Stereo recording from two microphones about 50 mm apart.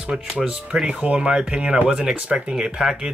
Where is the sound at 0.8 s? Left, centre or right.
Right.